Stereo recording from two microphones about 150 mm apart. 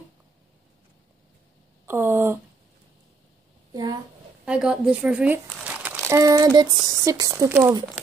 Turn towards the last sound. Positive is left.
turn(degrees=-15)  # may be behind; listen again after turning